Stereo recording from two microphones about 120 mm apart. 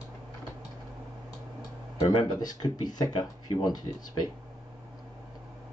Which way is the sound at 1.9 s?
35° left (ahead or behind).